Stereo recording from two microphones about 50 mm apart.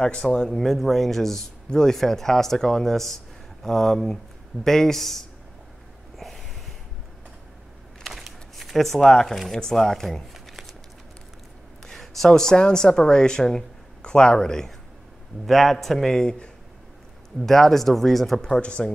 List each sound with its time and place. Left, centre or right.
0.0 s speech: centre
6.1 s snort: centre
8.0 s a sound: centre
9.6 s speech: centre
11.8 s speech: centre
16.1 s speech: centre